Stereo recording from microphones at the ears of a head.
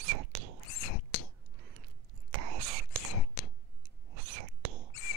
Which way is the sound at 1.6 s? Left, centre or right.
Right.